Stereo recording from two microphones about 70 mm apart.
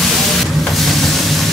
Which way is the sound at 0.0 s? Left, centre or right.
Centre.